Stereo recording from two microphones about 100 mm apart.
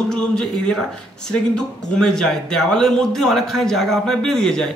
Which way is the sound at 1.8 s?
5° left (ahead or behind).